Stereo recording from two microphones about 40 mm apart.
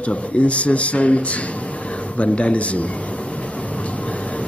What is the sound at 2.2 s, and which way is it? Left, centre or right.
Speech, left.